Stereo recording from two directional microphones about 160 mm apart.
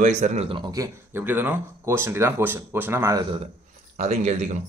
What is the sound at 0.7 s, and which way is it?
Speech, 15° right (ahead or behind).